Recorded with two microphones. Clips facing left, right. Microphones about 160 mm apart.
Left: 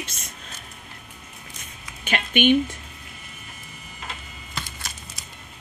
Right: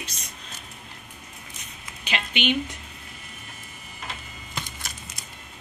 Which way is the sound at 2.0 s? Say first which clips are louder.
Left 6 dB; 50° left (ahead or behind).